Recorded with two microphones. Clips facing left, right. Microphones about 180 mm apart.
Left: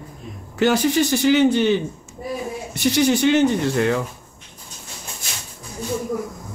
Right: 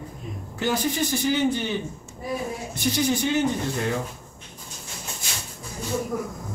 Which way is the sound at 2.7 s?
75° left (ahead or behind).